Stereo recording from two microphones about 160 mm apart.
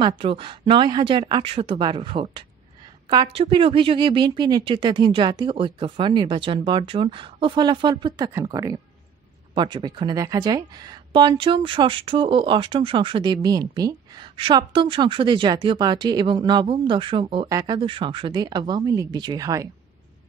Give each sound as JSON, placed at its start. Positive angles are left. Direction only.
{"t": 0.0, "sound": "speech", "side_deg": -35}